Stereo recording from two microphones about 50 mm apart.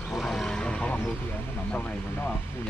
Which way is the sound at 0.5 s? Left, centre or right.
Centre.